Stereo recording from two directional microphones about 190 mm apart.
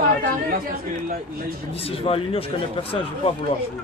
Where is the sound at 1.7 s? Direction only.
30° left (ahead or behind).